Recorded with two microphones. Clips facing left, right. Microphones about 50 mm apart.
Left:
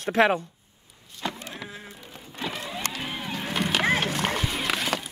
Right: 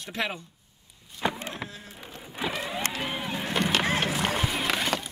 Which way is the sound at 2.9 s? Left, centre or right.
Centre.